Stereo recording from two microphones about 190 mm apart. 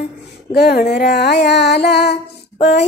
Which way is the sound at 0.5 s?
60° left (ahead or behind).